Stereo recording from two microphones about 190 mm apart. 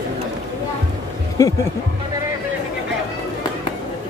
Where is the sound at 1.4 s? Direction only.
15° left (ahead or behind).